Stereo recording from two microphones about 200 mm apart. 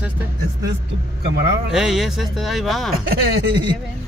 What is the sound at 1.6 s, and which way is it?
Speech, centre (ahead or behind).